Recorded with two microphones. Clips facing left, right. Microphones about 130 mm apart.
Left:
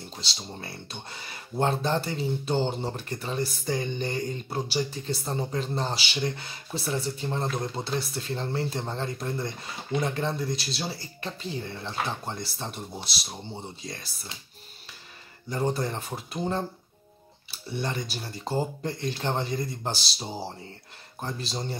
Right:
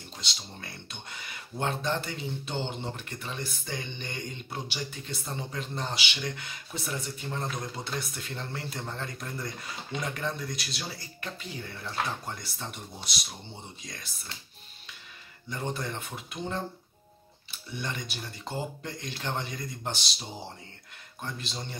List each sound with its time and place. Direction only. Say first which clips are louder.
0.2 s speech: left 3 dB; 35° left (ahead or behind)
15.5 s speech: left 6 dB; 35° left (ahead or behind)